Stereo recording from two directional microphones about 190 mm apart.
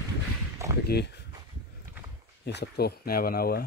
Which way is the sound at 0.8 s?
60° left (ahead or behind).